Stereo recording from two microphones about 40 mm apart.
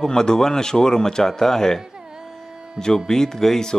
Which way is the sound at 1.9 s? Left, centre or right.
Centre.